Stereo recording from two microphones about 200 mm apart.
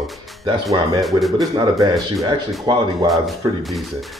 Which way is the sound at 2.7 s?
20° right (ahead or behind).